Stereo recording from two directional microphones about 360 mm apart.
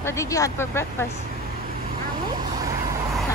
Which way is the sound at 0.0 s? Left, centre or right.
Centre.